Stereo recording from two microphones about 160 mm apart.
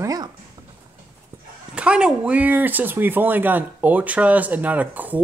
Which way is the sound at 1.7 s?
5° right (ahead or behind).